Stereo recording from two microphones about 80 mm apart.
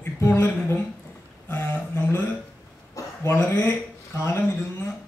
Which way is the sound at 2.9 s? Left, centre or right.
Left.